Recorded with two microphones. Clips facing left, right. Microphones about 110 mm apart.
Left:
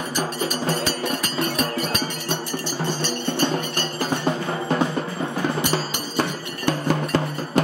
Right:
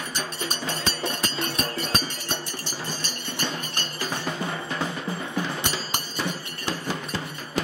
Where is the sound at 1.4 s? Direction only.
30° right (ahead or behind).